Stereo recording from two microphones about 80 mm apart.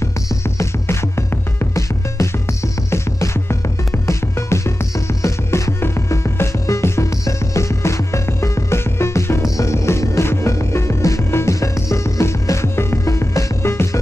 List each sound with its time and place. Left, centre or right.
0.6 s music: left